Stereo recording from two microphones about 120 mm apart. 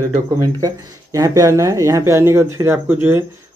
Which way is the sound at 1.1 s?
30° right (ahead or behind).